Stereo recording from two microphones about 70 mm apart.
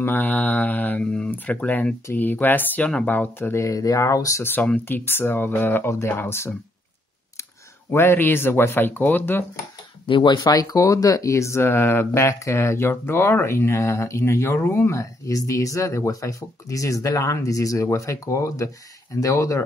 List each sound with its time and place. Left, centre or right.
0.0 s mantra: left
3.5 s speech: left
4.4 s speech: left
7.9 s speech: left
10.4 s speech: left